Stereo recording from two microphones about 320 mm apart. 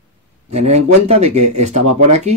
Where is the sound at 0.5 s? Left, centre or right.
Centre.